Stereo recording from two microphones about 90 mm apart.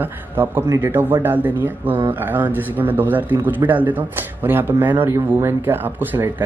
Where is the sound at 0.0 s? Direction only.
25° right (ahead or behind).